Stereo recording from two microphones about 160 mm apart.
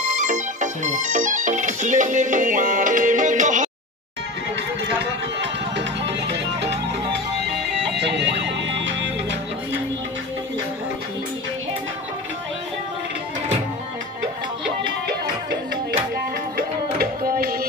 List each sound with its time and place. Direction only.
0.0 s music: 50° right (ahead or behind)
6.2 s music: 90° right
16.5 s music: 70° right (ahead or behind)